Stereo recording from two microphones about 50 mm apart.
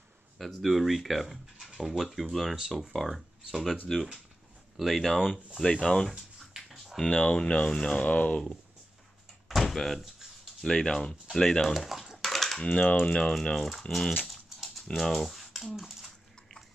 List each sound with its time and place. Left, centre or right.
0.4 s speech: centre
5.6 s speech: centre
6.1 s a sound: centre
7.1 s speech: left
9.5 s door: centre
10.6 s speech: centre
13.0 s speech: centre
13.3 s speech: centre
14.2 s a sound: centre